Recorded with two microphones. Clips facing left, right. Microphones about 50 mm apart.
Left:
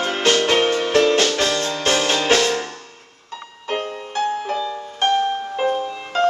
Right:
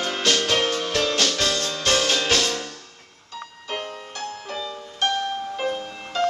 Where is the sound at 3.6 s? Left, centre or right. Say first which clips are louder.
Left 7 dB; left.